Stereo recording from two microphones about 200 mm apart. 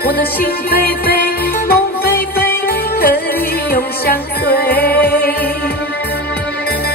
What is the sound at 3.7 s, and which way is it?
Music, 50° left (ahead or behind).